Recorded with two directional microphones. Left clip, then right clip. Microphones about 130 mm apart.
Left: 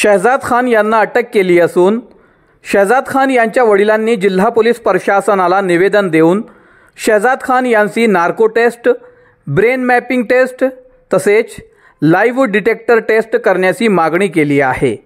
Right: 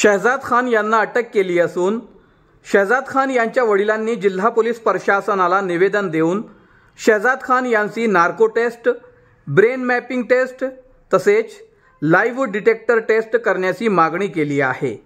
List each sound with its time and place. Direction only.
0.0 s speech: 30° left (ahead or behind)
0.3 s speech: 45° left (ahead or behind)